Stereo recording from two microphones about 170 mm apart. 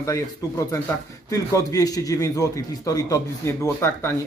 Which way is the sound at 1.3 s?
20° left (ahead or behind).